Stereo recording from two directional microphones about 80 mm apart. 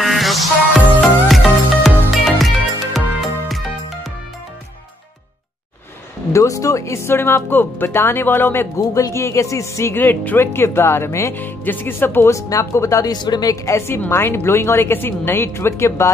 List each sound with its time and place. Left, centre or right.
0.0 s music: centre
6.3 s speech: left
8.7 s speech: left
9.1 s speech: left
11.3 s speech: left
13.1 s speech: left
13.7 s speech: left